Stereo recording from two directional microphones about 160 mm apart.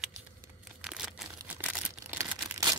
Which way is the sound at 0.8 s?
Centre (ahead or behind).